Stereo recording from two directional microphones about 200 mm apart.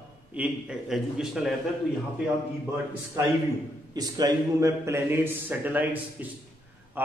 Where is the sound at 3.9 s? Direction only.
20° right (ahead or behind).